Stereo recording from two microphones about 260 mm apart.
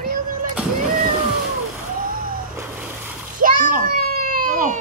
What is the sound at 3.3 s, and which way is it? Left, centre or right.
Children playing, right.